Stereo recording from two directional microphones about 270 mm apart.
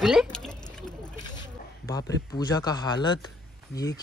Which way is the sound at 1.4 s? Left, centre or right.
Centre.